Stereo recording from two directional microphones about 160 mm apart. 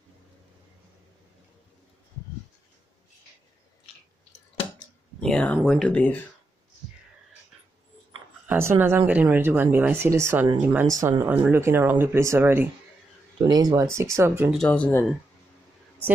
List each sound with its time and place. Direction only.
5.2 s speech: 5° left (ahead or behind)
8.5 s speech: 15° right (ahead or behind)
10.9 s speech: 20° right (ahead or behind)
14.5 s speech: 5° left (ahead or behind)